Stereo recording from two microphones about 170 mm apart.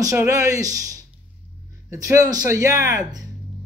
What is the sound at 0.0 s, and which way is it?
Speech, 20° right (ahead or behind).